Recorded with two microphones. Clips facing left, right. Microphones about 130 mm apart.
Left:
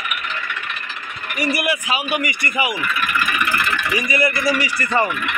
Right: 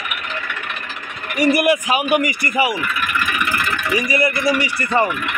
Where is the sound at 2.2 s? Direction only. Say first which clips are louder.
Right 3 dB; 35° right (ahead or behind).